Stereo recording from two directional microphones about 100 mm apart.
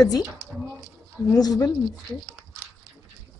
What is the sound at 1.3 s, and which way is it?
Speech, 40° left (ahead or behind).